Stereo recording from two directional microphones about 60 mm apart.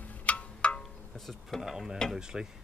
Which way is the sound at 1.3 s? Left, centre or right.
Centre.